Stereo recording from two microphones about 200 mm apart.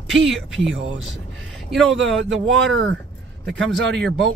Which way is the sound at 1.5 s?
Centre (ahead or behind).